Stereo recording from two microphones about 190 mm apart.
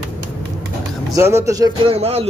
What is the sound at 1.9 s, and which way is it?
Speech, 30° right (ahead or behind).